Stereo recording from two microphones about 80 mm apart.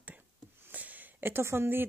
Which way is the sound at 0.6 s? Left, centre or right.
Right.